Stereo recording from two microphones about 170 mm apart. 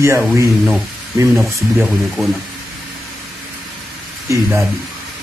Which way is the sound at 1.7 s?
Centre (ahead or behind).